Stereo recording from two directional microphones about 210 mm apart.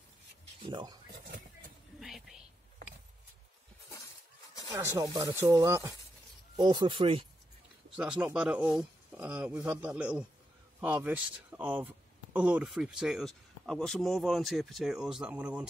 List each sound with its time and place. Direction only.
0.7 s speech: 20° right (ahead or behind)
2.0 s whispering: centre (ahead or behind)
4.6 s speech: 15° right (ahead or behind)
7.9 s speech: centre (ahead or behind)